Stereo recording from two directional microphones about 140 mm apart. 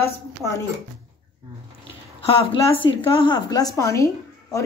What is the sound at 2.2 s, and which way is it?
A woman's voice, 40° left (ahead or behind).